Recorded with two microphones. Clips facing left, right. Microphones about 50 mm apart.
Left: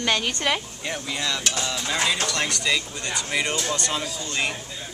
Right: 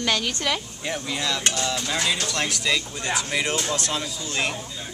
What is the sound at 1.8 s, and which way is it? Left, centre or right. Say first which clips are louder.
Speech: left 1 dB; centre.